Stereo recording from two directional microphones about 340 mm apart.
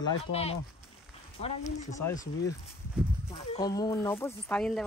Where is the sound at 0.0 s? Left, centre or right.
Centre.